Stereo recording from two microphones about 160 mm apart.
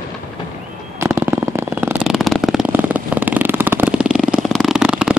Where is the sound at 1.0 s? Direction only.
15° right (ahead or behind).